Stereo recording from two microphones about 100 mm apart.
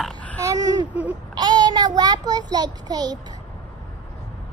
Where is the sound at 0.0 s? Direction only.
15° left (ahead or behind).